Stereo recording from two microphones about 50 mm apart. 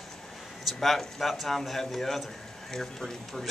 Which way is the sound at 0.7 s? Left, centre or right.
Centre.